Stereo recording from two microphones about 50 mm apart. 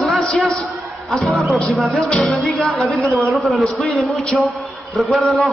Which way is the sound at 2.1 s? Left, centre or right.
Centre.